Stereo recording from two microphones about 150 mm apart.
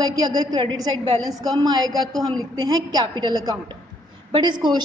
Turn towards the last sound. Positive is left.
turn(degrees=-30)  # may be behind; listen again after turning